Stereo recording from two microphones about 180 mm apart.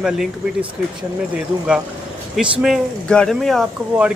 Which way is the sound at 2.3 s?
5° right (ahead or behind).